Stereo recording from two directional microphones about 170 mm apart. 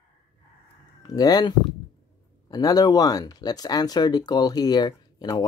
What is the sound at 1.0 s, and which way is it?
Speech, 20° left (ahead or behind).